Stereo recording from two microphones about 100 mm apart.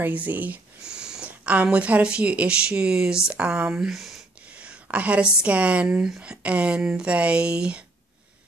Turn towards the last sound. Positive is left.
turn(degrees=-10)  # may be behind; listen again after turning